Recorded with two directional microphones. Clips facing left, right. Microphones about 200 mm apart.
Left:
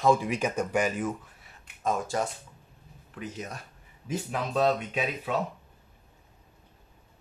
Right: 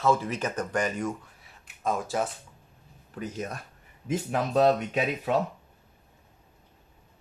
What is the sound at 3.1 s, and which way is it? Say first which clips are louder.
Speech: right 4 dB; 45° right (ahead or behind).